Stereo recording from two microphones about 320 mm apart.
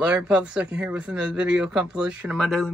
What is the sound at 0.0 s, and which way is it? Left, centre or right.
Speech, centre.